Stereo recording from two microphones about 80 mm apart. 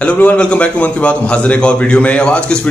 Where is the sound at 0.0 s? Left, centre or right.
Centre.